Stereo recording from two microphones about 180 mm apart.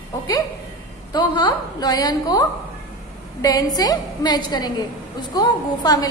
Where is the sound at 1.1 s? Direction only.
25° left (ahead or behind).